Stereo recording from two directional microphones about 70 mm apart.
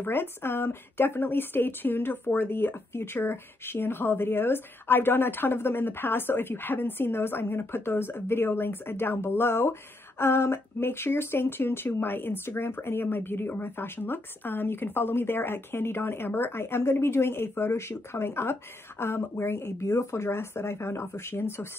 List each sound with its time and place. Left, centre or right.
0.0 s speech: left